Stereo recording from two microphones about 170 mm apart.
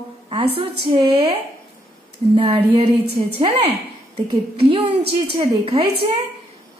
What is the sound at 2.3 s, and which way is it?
A woman's voice, 30° right (ahead or behind).